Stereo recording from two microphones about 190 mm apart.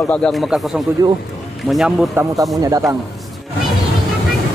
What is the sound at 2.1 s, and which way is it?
Speech, 20° right (ahead or behind).